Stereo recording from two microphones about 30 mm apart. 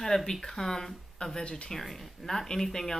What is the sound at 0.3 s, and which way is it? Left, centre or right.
Speech, centre.